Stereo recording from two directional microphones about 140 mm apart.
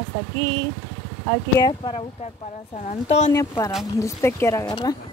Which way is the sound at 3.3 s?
20° left (ahead or behind).